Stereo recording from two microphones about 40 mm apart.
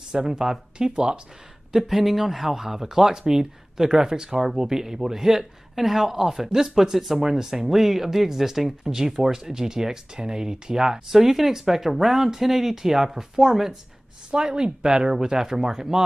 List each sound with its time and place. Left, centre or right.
0.1 s speech: centre
1.7 s speech: centre
14.3 s speech: right